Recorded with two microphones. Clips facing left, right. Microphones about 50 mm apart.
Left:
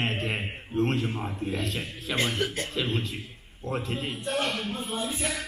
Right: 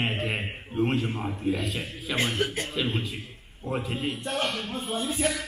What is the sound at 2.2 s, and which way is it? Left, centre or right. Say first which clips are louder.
Speech: right 1 dB; centre.